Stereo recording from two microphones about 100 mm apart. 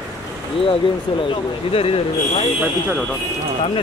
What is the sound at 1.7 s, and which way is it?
Speech, 75° left (ahead or behind).